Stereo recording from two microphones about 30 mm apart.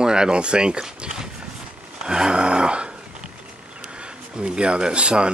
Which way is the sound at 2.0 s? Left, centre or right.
Right.